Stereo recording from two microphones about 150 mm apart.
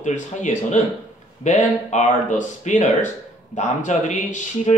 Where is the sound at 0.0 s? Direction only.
55° left (ahead or behind).